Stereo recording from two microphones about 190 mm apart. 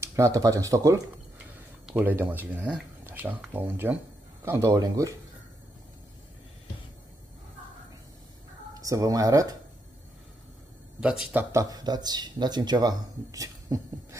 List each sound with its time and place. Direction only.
0.0 s speech: 15° right (ahead or behind)
8.7 s speech: 20° right (ahead or behind)
11.0 s speech: 5° right (ahead or behind)